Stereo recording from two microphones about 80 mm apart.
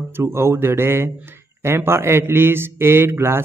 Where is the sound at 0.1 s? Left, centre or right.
Right.